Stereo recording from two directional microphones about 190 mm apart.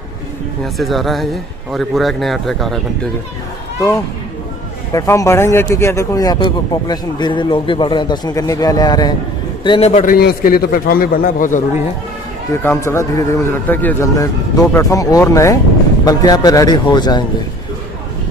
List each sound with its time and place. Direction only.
0.7 s speech: centre (ahead or behind)
4.9 s a man's voice: 15° left (ahead or behind); by 10.1 s 35° left (ahead or behind)
10.1 s a man's voice: 50° left (ahead or behind)
12.6 s speech: 15° left (ahead or behind)